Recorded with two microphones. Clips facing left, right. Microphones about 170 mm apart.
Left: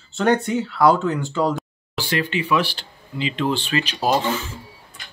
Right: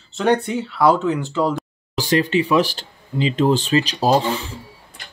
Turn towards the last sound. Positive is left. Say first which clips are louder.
# right 4 dB
turn(degrees=-35)  # may be behind; listen again after turning